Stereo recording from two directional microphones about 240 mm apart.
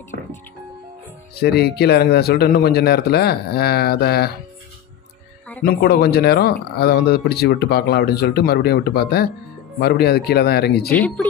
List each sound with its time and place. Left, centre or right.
0.1 s speech: left
1.3 s speech: left
5.6 s speech: left
11.0 s speech: centre